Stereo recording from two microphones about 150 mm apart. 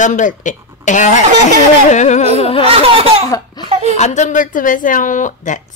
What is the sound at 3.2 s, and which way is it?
Laughter, 25° left (ahead or behind).